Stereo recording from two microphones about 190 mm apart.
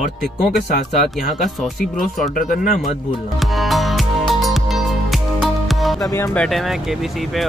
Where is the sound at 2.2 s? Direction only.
45° left (ahead or behind).